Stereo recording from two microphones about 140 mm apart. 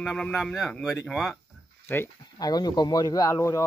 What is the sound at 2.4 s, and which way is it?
Speech, 30° left (ahead or behind).